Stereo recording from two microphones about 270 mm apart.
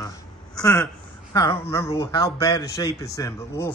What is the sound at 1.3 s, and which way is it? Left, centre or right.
Speech, centre.